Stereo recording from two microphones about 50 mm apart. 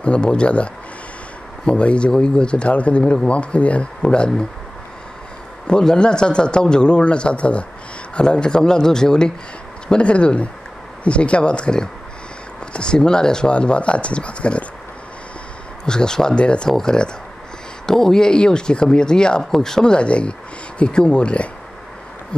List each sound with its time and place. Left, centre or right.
0.0 s speech: left
1.7 s speech: left
5.7 s speech: centre
15.8 s speech: centre